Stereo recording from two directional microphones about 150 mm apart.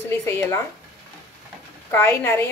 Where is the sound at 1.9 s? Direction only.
10° left (ahead or behind).